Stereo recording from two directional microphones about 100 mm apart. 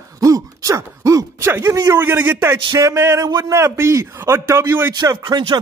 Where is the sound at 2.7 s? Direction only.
30° right (ahead or behind).